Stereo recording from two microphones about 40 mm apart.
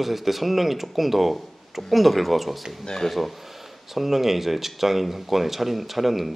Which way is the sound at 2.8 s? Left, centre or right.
Centre.